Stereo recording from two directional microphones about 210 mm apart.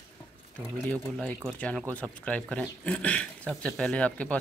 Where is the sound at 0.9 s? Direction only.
5° left (ahead or behind).